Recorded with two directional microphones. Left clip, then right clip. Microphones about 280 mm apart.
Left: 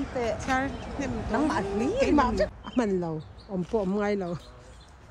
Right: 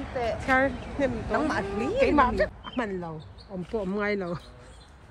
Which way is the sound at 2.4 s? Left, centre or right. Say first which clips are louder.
Even; left.